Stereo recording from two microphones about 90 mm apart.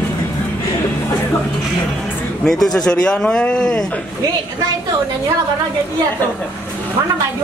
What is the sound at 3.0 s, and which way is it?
Speech, 10° left (ahead or behind).